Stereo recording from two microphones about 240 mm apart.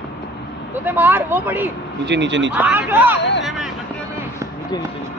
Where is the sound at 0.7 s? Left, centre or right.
Centre.